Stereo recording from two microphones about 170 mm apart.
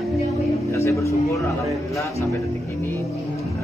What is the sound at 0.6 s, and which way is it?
Music, 15° left (ahead or behind).